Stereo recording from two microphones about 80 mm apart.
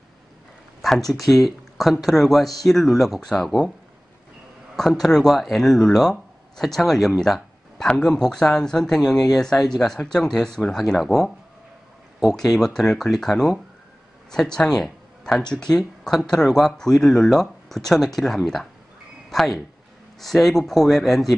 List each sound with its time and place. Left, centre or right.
0.8 s speech: centre
4.7 s speech: centre
15.5 s speech: centre